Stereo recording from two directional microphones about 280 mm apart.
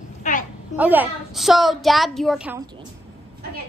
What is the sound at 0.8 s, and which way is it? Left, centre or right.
A child's voice, centre.